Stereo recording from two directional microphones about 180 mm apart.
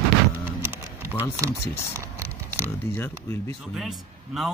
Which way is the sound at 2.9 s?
30° right (ahead or behind).